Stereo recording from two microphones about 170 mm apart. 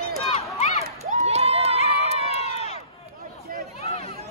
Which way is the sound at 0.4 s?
40° left (ahead or behind).